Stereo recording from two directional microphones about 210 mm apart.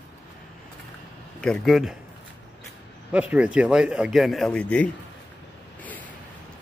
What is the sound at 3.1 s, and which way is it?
A man's voice, 5° right (ahead or behind).